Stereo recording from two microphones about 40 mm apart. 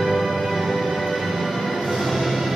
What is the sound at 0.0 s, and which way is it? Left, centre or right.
Music, centre.